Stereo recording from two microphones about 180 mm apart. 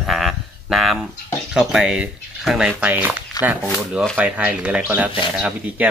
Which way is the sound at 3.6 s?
Centre (ahead or behind).